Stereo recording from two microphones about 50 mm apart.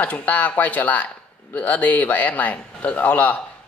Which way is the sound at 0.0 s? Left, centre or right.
Left.